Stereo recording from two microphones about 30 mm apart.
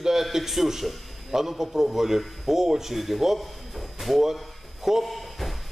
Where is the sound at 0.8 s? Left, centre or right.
Centre.